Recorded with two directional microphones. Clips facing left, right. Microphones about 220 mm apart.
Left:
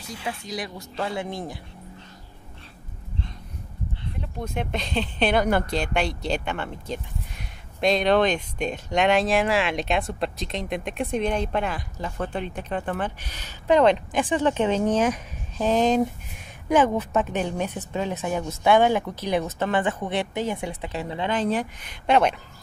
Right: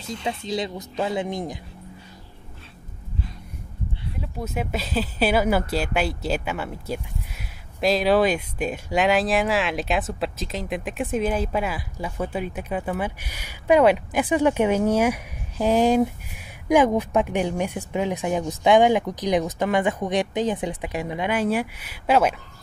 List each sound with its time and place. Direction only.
0.5 s speech: 20° right (ahead or behind)
4.0 s speech: 5° right (ahead or behind)